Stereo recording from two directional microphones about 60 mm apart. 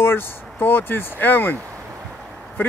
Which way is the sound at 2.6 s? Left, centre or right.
Left.